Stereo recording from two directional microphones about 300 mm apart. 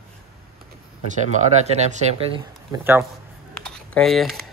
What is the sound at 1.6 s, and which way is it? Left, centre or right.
Speech, right.